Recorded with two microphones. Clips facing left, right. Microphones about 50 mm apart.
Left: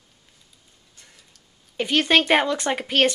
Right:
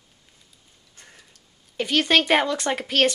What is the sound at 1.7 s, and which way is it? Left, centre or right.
A woman's voice, centre.